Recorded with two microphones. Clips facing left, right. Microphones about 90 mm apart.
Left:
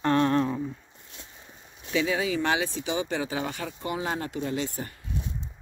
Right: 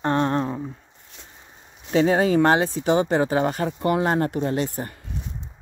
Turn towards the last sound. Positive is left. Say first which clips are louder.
# right 6 dB
turn(degrees=-50)  # may be behind; listen again after turning